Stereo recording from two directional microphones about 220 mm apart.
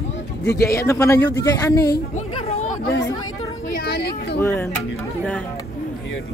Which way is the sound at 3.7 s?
45° left (ahead or behind).